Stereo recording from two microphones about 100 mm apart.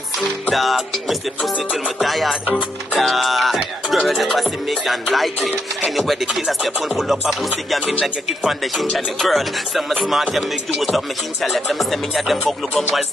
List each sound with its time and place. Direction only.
0.5 s music: centre (ahead or behind)